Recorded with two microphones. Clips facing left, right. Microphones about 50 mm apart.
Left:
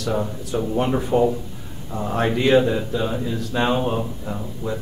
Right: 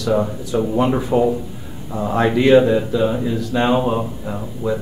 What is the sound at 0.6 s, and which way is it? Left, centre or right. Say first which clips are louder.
A man's voice: right 4 dB; centre.